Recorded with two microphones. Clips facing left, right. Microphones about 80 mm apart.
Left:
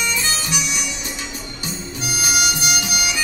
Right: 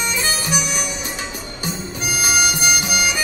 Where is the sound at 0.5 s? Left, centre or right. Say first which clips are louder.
Right 3 dB; right.